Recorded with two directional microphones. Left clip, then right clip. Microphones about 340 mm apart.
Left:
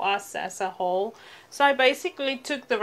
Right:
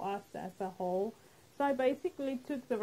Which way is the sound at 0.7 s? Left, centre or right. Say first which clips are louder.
Left 8 dB; left.